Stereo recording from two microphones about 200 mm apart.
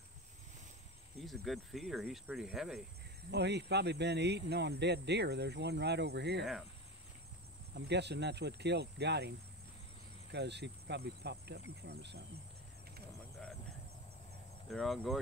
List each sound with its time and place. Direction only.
1.2 s speech: centre (ahead or behind)
3.3 s speech: 55° right (ahead or behind)
7.7 s speech: 60° right (ahead or behind)
10.3 s speech: 60° right (ahead or behind)
14.7 s speech: centre (ahead or behind)